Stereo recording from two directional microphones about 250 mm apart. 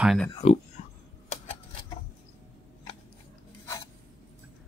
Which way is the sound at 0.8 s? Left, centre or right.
Left.